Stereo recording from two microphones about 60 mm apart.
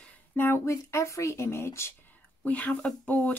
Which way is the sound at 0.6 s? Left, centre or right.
Left.